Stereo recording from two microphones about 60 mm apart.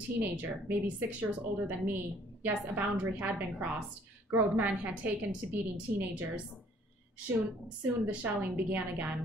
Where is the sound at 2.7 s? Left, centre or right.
Right.